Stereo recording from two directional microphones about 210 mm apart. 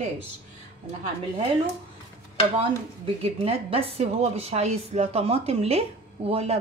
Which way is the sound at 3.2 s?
30° right (ahead or behind).